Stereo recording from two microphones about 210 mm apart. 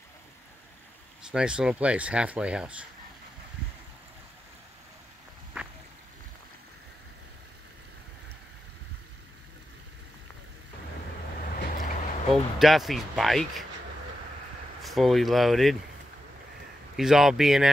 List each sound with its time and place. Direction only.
1.3 s speech: 5° right (ahead or behind)
11.5 s vehicle: 40° left (ahead or behind)
12.5 s speech: centre (ahead or behind)
14.8 s speech: centre (ahead or behind)
16.9 s speech: centre (ahead or behind)